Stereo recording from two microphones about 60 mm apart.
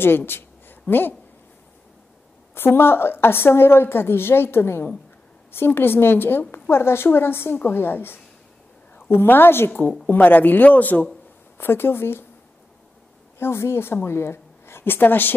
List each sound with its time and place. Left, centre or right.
0.0 s a sound: left
2.5 s a woman's voice: left
11.5 s speech: left
13.4 s a woman's voice: left